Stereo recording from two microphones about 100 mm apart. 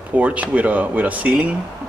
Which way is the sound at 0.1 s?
15° right (ahead or behind).